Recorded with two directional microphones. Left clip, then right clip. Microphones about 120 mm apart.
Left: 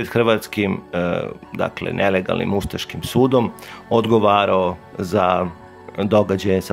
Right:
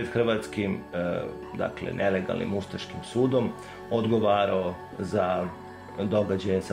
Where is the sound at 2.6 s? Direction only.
60° left (ahead or behind).